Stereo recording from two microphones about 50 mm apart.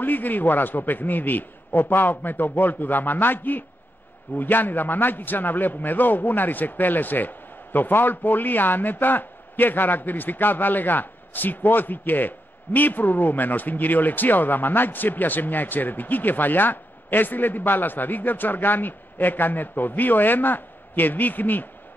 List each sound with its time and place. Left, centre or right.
0.0 s a man's voice: left